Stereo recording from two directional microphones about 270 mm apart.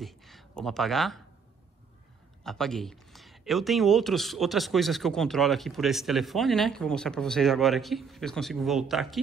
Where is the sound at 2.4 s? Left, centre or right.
Centre.